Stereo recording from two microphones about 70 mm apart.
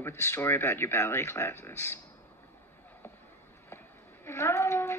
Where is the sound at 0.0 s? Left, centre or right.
Left.